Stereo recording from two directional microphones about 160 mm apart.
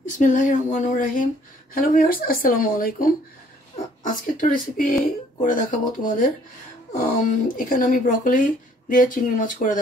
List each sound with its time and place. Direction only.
0.0 s speech: 50° left (ahead or behind)